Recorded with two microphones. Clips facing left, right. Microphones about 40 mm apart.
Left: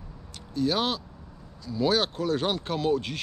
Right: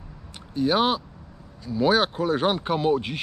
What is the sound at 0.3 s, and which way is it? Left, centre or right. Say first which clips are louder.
Speech: right 4 dB; right.